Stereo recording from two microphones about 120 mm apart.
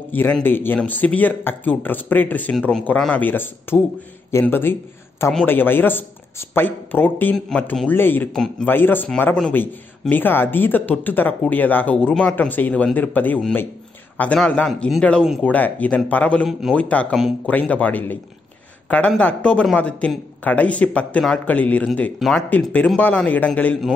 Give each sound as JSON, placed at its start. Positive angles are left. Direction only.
{"t": 0.1, "sound": "speech", "side_deg": 15}
{"t": 7.3, "sound": "a man's voice", "side_deg": 5}
{"t": 7.9, "sound": "speech", "side_deg": 15}
{"t": 8.3, "sound": "a man's voice", "side_deg": 5}
{"t": 8.6, "sound": "speech", "side_deg": 15}